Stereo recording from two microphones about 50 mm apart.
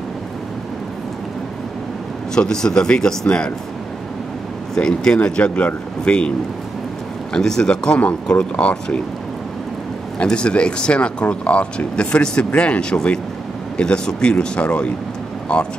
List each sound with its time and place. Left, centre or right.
2.3 s speech: centre
4.7 s speech: centre
5.2 s speech: left
7.3 s speech: centre
10.2 s speech: left